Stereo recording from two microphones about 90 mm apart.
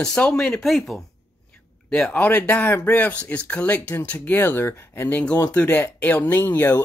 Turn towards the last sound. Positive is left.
turn(degrees=25)  # may be behind; listen again after turning